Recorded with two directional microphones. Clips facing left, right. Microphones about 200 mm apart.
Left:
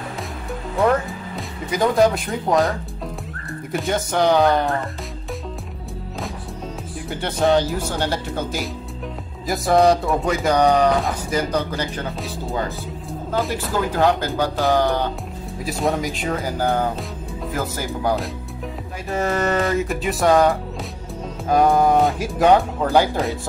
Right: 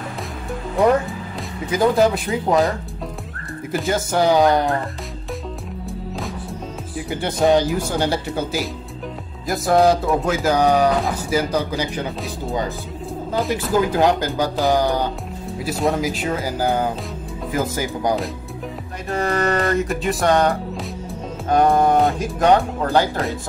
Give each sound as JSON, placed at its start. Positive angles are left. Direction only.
{"t": 1.7, "sound": "speech", "side_deg": 0}
{"t": 3.7, "sound": "speech", "side_deg": 0}
{"t": 7.1, "sound": "speech", "side_deg": -10}
{"t": 13.5, "sound": "speech", "side_deg": -15}
{"t": 15.6, "sound": "speech", "side_deg": 0}
{"t": 19.0, "sound": "speech", "side_deg": 5}